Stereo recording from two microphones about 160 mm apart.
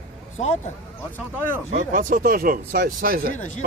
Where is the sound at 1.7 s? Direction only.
55° right (ahead or behind).